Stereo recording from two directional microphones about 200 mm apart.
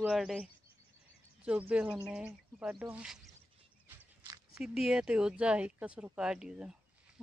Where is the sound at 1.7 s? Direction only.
5° right (ahead or behind).